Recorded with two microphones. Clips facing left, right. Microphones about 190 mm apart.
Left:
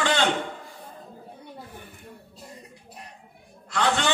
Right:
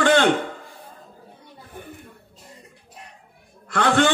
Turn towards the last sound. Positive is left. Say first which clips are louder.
# right 6 dB
turn(degrees=-55)  # may be behind; listen again after turning